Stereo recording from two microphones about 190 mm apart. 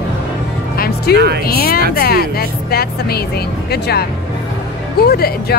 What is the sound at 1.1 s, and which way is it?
Speech, 60° right (ahead or behind).